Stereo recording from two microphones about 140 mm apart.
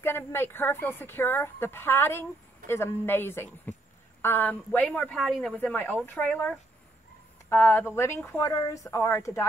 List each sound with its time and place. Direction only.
0.0 s a woman's voice: 15° left (ahead or behind)